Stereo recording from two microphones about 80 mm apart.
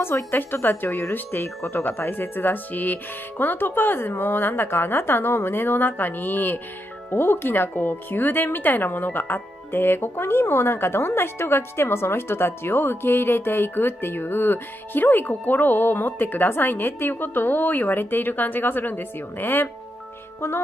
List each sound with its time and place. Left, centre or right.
0.0 s speech: left
20.3 s music: left